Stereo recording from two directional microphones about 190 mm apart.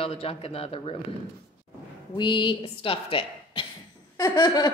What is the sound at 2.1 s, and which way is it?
A woman's voice, 25° left (ahead or behind).